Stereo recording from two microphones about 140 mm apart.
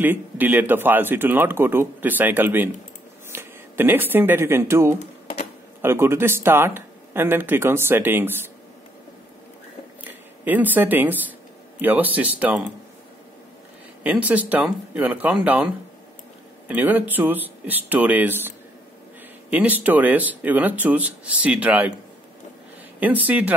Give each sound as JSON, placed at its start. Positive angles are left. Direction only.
{"t": 0.0, "sound": "speech", "side_deg": -15}
{"t": 10.4, "sound": "speech", "side_deg": -10}
{"t": 14.0, "sound": "speech", "side_deg": -10}
{"t": 19.5, "sound": "speech", "side_deg": -10}
{"t": 22.9, "sound": "speech", "side_deg": -10}